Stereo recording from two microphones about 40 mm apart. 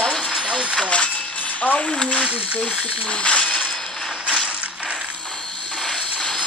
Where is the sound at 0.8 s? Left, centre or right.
Left.